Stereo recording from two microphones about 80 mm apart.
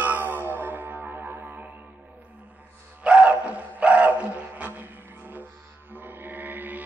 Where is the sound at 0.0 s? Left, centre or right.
Right.